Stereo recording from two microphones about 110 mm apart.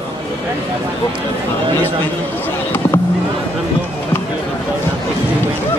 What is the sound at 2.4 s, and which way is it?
Basketball bounce, 20° left (ahead or behind).